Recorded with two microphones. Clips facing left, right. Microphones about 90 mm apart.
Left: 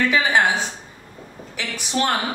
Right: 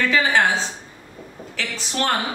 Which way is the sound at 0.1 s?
15° left (ahead or behind).